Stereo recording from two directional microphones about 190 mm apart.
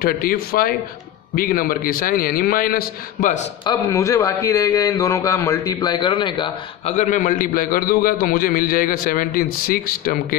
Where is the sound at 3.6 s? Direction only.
20° left (ahead or behind).